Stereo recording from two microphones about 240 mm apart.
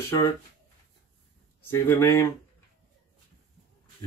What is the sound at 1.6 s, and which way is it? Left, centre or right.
Speech, centre.